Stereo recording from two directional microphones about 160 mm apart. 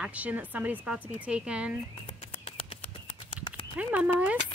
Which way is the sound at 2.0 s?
35° left (ahead or behind).